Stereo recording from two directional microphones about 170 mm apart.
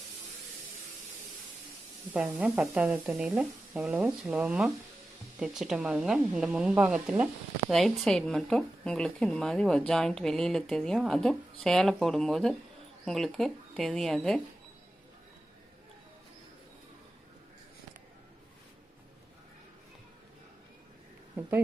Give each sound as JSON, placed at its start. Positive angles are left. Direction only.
{"t": 2.1, "sound": "speech", "side_deg": -5}